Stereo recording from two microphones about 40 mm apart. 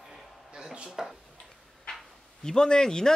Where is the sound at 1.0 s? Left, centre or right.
Centre.